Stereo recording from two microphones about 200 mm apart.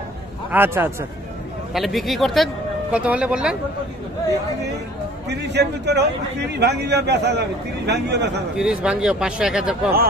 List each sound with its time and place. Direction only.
0.5 s a man's voice: 10° right (ahead or behind)
5.3 s a man's voice: 55° right (ahead or behind)
8.5 s speech: 5° right (ahead or behind)